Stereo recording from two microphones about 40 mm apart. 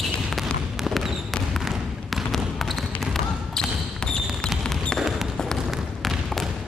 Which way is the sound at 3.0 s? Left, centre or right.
Centre.